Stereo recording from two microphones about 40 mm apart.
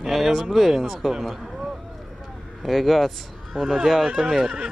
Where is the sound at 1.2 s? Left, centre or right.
Centre.